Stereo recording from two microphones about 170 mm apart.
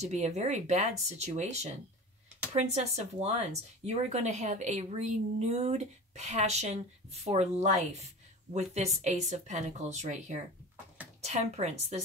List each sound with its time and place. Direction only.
0.0 s a woman's voice: 40° right (ahead or behind)